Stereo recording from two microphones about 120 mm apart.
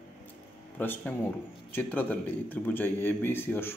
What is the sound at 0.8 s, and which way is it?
A man's voice, 15° left (ahead or behind).